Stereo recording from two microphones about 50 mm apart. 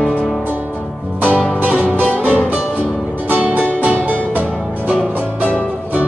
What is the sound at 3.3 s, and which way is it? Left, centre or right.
Music, right.